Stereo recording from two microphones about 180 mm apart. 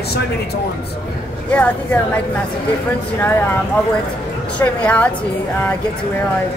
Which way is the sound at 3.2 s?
10° left (ahead or behind).